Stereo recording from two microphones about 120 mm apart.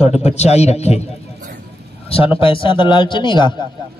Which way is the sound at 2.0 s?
50° left (ahead or behind).